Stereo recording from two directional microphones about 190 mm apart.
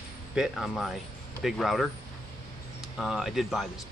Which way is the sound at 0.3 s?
5° right (ahead or behind).